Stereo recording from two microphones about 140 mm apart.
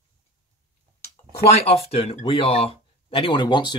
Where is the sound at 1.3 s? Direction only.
45° left (ahead or behind).